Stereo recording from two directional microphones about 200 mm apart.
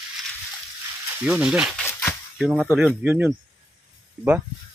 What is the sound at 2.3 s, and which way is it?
Speech, 5° right (ahead or behind).